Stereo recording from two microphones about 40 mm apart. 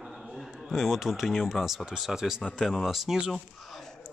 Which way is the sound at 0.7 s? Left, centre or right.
Centre.